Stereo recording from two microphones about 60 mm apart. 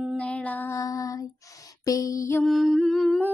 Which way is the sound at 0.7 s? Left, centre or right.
Left.